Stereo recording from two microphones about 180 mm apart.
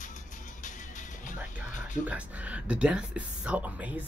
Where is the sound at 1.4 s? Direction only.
10° right (ahead or behind).